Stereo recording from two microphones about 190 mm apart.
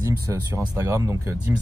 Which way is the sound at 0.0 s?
15° right (ahead or behind).